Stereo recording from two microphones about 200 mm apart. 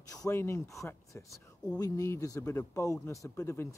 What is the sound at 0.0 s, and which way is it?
Speech, 15° left (ahead or behind).